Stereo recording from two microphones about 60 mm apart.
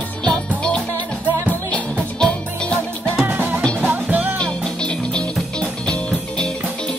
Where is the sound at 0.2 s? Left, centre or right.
Centre.